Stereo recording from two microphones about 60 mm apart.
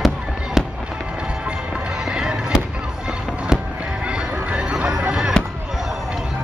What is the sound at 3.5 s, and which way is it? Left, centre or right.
Music, centre.